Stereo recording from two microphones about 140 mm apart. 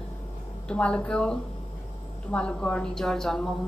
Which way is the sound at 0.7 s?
10° left (ahead or behind).